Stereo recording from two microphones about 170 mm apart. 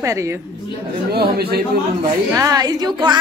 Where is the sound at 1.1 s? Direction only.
70° right (ahead or behind).